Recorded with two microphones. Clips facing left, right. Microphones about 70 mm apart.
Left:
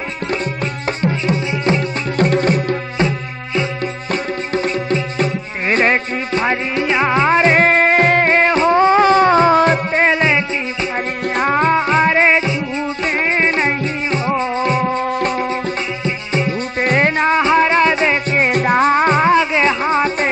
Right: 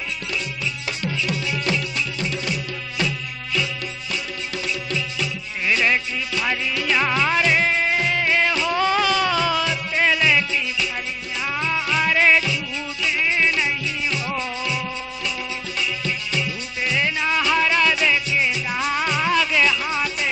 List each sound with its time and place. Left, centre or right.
1.0 s music: left
2.1 s music: left
11.3 s music: left